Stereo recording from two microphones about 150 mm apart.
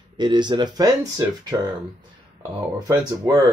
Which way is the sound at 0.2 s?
30° right (ahead or behind).